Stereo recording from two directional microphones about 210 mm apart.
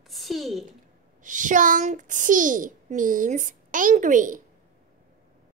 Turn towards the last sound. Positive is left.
turn(degrees=-40)  # may be behind; listen again after turning